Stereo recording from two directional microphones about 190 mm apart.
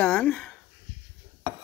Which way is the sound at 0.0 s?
5° left (ahead or behind).